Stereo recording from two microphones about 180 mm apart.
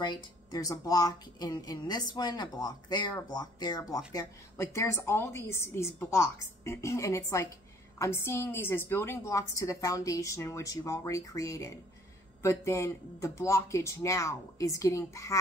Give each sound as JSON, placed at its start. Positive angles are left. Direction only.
{"t": 0.0, "sound": "a woman's voice", "side_deg": 20}